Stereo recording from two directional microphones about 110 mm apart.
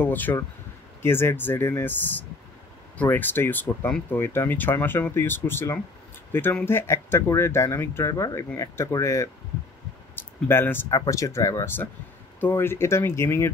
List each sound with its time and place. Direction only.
0.0 s speech: 15° left (ahead or behind)